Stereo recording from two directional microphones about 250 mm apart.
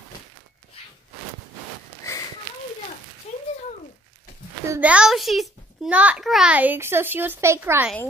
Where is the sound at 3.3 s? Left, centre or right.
Left.